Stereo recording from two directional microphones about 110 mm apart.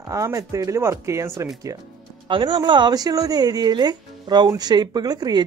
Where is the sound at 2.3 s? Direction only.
45° right (ahead or behind).